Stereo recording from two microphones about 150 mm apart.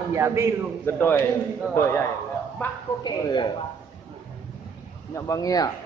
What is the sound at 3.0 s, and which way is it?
Speech, 30° left (ahead or behind).